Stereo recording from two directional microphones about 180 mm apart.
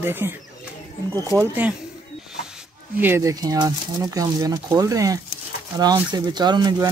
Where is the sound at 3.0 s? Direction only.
15° right (ahead or behind).